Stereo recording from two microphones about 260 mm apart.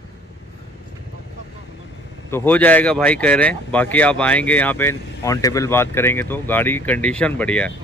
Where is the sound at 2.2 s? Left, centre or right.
Centre.